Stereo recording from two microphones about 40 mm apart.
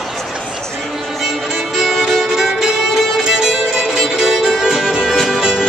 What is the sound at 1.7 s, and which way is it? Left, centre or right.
Music, centre.